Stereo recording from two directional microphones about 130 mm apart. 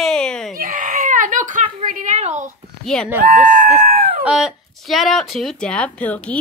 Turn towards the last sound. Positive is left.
turn(degrees=10)  # may be behind; listen again after turning